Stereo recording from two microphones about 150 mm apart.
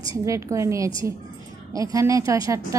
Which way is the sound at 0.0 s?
20° right (ahead or behind).